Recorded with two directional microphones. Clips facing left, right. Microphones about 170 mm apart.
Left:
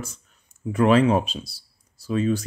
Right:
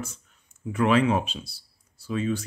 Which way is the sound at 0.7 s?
40° left (ahead or behind).